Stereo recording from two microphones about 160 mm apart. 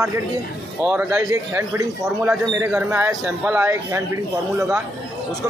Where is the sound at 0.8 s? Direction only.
15° right (ahead or behind).